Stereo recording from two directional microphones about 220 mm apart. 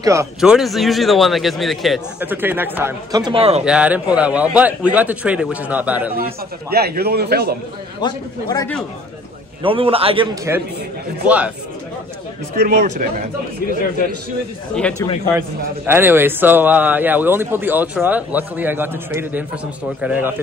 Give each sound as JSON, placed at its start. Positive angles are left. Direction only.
{"t": 0.0, "sound": "speech", "side_deg": -15}
{"t": 0.4, "sound": "a man's voice", "side_deg": 0}
{"t": 3.6, "sound": "speech", "side_deg": -5}
{"t": 6.7, "sound": "a man's voice", "side_deg": -45}
{"t": 8.0, "sound": "a man's voice", "side_deg": 20}
{"t": 9.6, "sound": "a man's voice", "side_deg": -25}
{"t": 11.2, "sound": "speech", "side_deg": -5}
{"t": 12.6, "sound": "speech", "side_deg": -40}
{"t": 14.8, "sound": "a man's voice", "side_deg": 5}
{"t": 15.9, "sound": "speech", "side_deg": -10}